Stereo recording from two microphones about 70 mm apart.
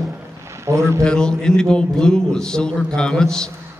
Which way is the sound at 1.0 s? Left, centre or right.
Centre.